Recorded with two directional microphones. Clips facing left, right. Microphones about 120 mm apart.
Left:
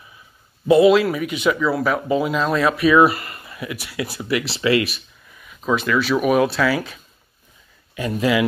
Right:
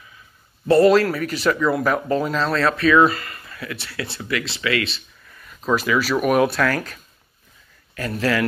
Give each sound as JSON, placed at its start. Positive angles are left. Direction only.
{"t": 0.7, "sound": "speech", "side_deg": 5}
{"t": 5.3, "sound": "speech", "side_deg": 5}